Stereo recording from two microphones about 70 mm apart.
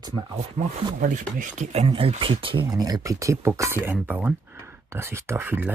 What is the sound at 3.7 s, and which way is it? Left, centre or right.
Speech, right.